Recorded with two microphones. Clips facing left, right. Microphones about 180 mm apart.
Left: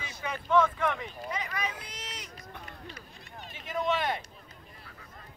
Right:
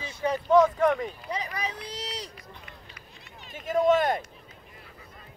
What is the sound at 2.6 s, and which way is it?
Run, 45° left (ahead or behind).